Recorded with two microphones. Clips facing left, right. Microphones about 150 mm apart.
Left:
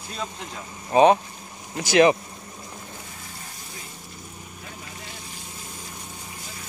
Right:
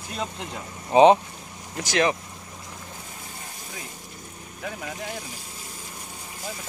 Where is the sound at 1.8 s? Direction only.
10° left (ahead or behind).